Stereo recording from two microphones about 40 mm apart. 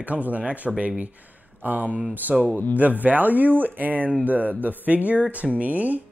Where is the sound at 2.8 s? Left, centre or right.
Right.